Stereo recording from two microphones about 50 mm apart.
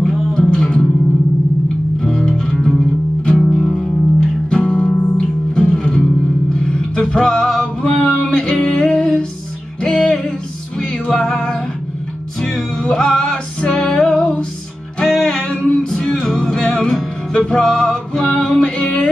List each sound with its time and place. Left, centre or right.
0.0 s music: centre
2.0 s music: centre
4.2 s music: centre